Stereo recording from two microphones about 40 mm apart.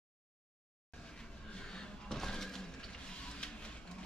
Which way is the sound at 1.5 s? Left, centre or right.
Centre.